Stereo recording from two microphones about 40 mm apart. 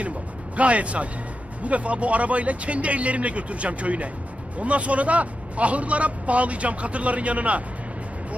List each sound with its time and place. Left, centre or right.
0.6 s a man's voice: right